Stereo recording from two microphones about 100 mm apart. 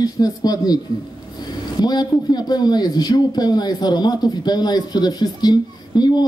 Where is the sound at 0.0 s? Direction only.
40° left (ahead or behind).